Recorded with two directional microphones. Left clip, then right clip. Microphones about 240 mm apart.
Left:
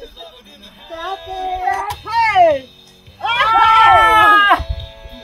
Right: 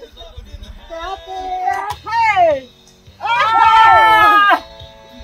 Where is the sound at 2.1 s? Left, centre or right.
Centre.